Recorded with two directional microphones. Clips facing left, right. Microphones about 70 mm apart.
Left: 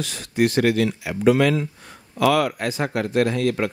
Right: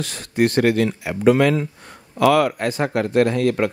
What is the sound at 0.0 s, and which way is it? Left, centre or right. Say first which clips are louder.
Speech: right 2 dB; right.